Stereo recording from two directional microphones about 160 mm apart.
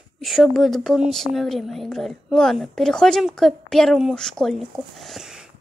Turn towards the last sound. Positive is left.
turn(degrees=-5)  # may be behind; listen again after turning